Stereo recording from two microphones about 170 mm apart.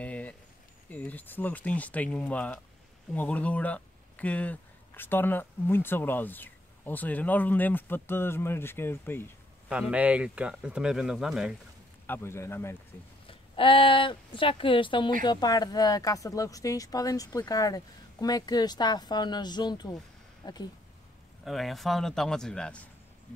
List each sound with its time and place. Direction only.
0.0 s a sound: 5° left (ahead or behind)
0.8 s speech: 10° left (ahead or behind)
9.7 s speech: 5° right (ahead or behind)
12.1 s speech: 15° left (ahead or behind)
13.3 s speech: 30° left (ahead or behind)
21.5 s speech: centre (ahead or behind)